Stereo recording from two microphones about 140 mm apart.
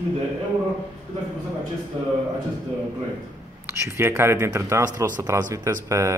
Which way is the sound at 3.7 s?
20° right (ahead or behind).